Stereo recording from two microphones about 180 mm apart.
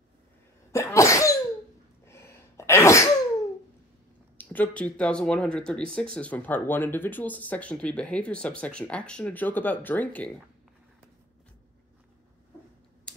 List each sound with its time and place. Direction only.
0.7 s sneeze: 15° left (ahead or behind)
4.4 s speech: 10° left (ahead or behind)